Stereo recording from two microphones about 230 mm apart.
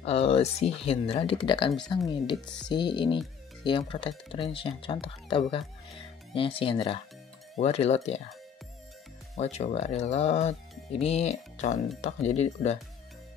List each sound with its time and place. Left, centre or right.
0.0 s speech: left
9.3 s speech: left